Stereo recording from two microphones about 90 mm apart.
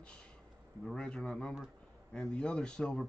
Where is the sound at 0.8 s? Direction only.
10° left (ahead or behind).